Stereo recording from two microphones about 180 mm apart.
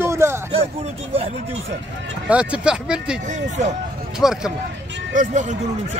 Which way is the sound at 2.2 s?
5° right (ahead or behind).